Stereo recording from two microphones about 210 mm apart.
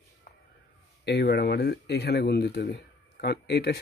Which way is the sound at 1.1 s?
50° left (ahead or behind).